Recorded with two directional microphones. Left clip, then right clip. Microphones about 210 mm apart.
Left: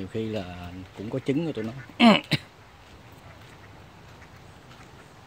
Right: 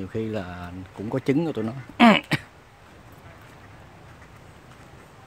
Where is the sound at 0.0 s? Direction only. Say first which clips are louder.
Right 2 dB; 5° right (ahead or behind).